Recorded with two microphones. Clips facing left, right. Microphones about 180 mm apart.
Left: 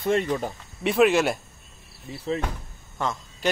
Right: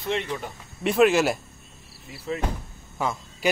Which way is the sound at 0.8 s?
Centre (ahead or behind).